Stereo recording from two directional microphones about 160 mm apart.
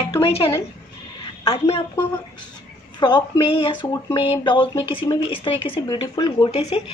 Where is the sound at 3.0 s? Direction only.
30° left (ahead or behind).